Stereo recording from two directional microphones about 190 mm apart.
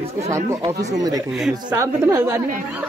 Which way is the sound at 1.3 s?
Centre (ahead or behind).